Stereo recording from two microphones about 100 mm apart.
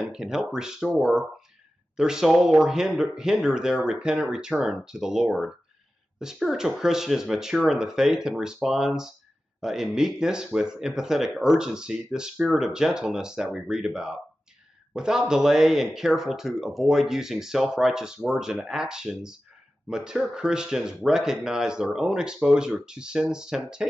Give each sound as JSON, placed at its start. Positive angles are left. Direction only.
{"t": 0.0, "sound": "speech", "side_deg": -5}